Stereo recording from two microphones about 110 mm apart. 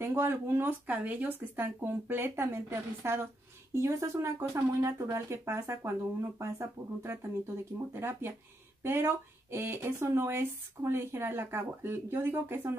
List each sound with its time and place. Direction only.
0.0 s speech: 20° right (ahead or behind)